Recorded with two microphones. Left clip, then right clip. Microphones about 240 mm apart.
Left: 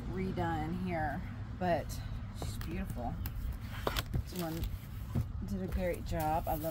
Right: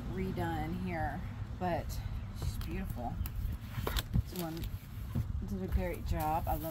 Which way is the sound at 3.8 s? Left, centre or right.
Left.